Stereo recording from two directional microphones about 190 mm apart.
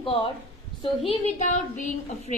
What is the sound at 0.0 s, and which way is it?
A woman's voice, 30° left (ahead or behind).